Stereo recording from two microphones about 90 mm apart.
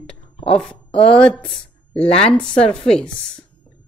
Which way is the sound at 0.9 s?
90° left.